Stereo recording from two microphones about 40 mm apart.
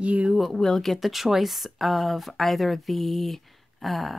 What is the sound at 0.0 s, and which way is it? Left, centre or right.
Speech, right.